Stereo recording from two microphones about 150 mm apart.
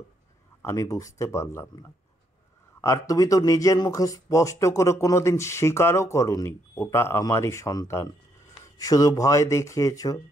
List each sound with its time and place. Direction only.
0.6 s speech: 20° left (ahead or behind)